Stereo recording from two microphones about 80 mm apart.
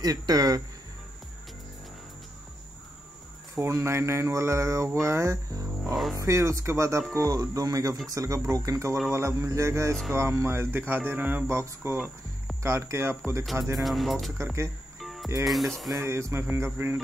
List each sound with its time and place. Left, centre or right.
0.0 s speech: right
3.5 s speech: right
7.2 s speech: right
11.4 s speech: right
13.8 s speech: centre
14.4 s speech: right
15.0 s music: centre
15.4 s speech: centre
16.0 s speech: right